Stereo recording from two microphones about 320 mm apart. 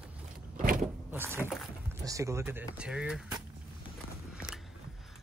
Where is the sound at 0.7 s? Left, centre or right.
Centre.